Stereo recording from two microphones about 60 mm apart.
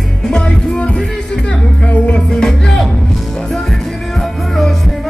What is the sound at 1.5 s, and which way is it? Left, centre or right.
Music, centre.